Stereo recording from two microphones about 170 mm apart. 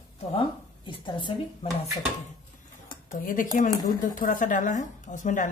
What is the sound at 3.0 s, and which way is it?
A woman's voice, 50° left (ahead or behind).